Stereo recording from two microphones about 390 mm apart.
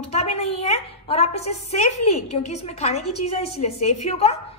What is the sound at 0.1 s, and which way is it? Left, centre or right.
A woman's voice, centre.